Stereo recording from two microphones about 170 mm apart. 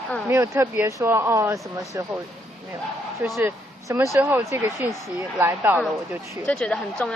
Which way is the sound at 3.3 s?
15° right (ahead or behind).